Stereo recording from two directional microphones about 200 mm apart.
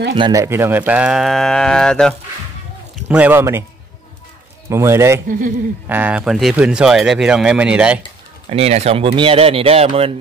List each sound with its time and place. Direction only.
0.1 s speech: 20° right (ahead or behind); by 2.1 s 5° left (ahead or behind)
3.1 s speech: 10° right (ahead or behind)
4.6 s speech: 15° right (ahead or behind)
8.5 s speech: 30° right (ahead or behind)